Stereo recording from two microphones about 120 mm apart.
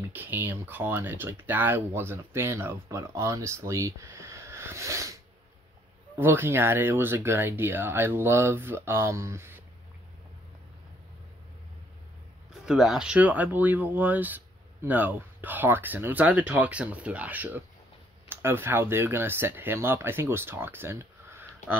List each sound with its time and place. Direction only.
0.1 s speech: 15° right (ahead or behind)
12.6 s speech: 5° right (ahead or behind); by 21.5 s 20° right (ahead or behind)